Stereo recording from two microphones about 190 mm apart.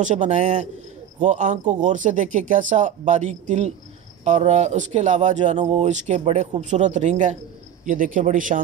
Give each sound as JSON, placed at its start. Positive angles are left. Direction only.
{"t": 0.0, "sound": "a man's voice", "side_deg": -40}